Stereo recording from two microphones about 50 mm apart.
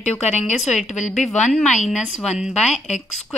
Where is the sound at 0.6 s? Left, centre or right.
Centre.